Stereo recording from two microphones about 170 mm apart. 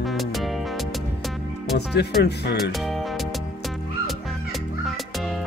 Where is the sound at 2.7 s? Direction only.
Centre (ahead or behind).